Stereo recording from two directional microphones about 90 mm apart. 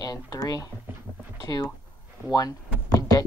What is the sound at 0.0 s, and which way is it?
Speech, 45° left (ahead or behind).